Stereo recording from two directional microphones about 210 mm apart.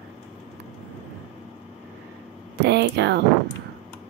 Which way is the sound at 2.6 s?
55° right (ahead or behind).